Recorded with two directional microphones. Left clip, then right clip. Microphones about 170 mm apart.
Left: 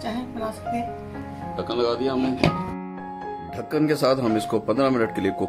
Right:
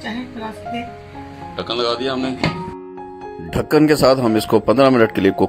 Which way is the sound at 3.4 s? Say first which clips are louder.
Right 10 dB; 40° right (ahead or behind).